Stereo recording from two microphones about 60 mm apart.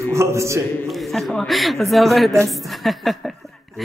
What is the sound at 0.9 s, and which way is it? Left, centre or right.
A man's voice, centre.